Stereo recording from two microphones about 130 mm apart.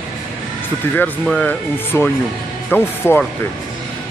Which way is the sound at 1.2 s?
5° left (ahead or behind).